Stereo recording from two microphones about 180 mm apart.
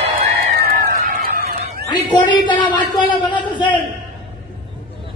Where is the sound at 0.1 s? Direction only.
55° right (ahead or behind).